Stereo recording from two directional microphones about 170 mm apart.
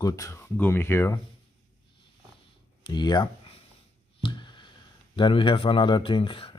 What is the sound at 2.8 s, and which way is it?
Speech, 25° left (ahead or behind).